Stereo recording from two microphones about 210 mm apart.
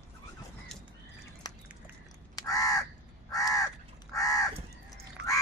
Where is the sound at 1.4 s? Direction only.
20° left (ahead or behind).